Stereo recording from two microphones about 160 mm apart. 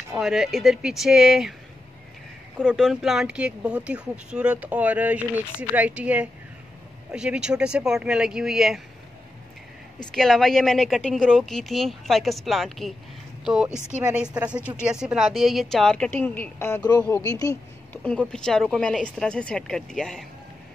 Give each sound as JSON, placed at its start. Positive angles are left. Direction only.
{"t": 0.2, "sound": "a woman's voice", "side_deg": 0}
{"t": 2.6, "sound": "a woman's voice", "side_deg": 0}
{"t": 10.1, "sound": "a woman's voice", "side_deg": 0}
{"t": 17.9, "sound": "a woman's voice", "side_deg": 5}